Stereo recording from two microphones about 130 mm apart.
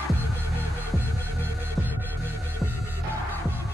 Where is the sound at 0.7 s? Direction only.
15° right (ahead or behind).